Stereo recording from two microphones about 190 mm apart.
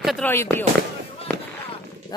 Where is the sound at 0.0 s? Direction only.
Centre (ahead or behind).